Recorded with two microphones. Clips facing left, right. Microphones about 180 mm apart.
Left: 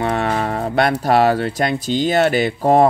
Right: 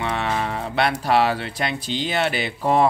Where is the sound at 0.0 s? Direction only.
45° left (ahead or behind).